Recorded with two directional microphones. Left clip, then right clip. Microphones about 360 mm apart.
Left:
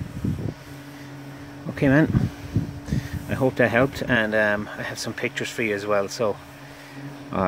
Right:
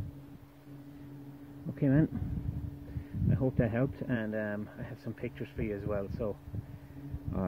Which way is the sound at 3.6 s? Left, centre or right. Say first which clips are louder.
Left 13 dB; centre.